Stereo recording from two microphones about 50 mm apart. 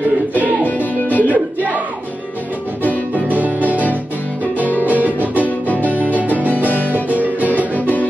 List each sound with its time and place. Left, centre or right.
0.3 s music: right
0.7 s music: left
1.3 s music: right
2.9 s music: right
4.8 s music: right
7.7 s music: left